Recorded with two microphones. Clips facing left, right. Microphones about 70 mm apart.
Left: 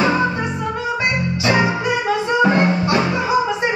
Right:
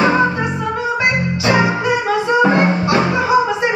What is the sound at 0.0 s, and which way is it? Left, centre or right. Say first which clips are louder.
Music: right 3 dB; right.